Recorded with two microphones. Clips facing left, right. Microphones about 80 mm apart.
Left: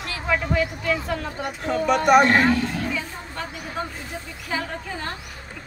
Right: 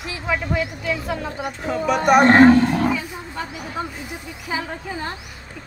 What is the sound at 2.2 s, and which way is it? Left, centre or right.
Speech, right.